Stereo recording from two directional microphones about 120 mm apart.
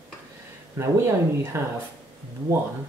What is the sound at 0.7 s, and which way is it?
Speech, 20° right (ahead or behind).